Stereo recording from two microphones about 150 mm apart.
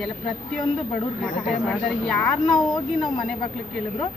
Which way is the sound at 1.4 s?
Centre (ahead or behind).